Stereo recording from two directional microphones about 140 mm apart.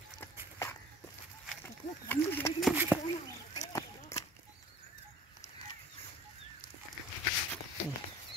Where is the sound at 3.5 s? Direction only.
25° left (ahead or behind).